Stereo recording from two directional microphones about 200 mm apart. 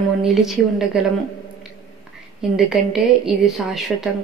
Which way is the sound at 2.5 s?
5° right (ahead or behind).